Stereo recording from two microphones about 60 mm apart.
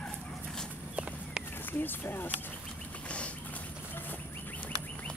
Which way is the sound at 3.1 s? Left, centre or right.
Left.